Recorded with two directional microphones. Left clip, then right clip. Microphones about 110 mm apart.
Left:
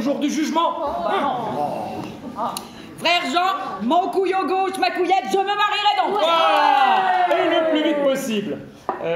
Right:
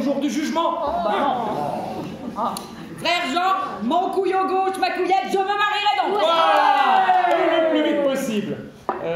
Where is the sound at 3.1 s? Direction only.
40° left (ahead or behind).